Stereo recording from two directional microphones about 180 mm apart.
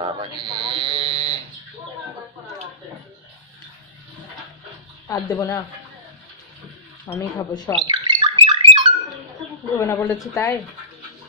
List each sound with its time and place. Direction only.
0.0 s a sound: 25° right (ahead or behind)
5.0 s speech: 20° left (ahead or behind)
7.3 s speech: 25° left (ahead or behind)
7.8 s bird: 25° right (ahead or behind)
9.8 s a woman's voice: 15° left (ahead or behind)